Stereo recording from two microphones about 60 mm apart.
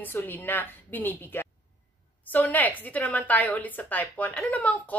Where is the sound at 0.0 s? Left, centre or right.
Left.